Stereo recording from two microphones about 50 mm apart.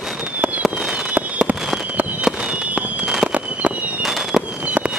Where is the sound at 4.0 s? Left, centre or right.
Centre.